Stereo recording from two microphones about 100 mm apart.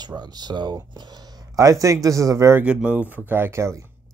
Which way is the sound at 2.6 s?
10° right (ahead or behind).